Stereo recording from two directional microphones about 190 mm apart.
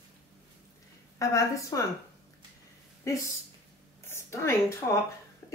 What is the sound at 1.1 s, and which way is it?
Speech, 15° left (ahead or behind).